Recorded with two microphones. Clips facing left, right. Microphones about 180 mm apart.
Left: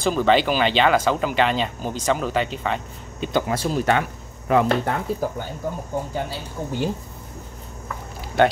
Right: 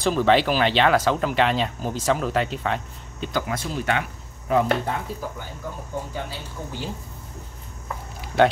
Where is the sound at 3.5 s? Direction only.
35° left (ahead or behind).